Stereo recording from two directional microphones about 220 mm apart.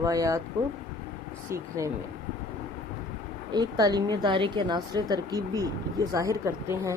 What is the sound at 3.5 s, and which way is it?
A woman's voice, 20° right (ahead or behind).